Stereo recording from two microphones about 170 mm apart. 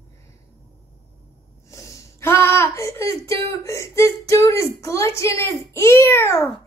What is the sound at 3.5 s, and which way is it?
A woman's voice, 15° left (ahead or behind).